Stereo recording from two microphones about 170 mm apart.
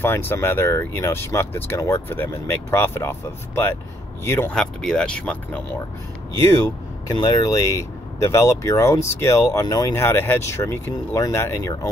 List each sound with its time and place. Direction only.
0.0 s speech: 10° left (ahead or behind)
4.6 s speech: 5° left (ahead or behind)
6.4 s speech: 20° left (ahead or behind)